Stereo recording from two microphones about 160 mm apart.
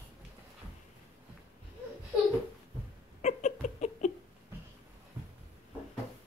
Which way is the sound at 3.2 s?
45° left (ahead or behind).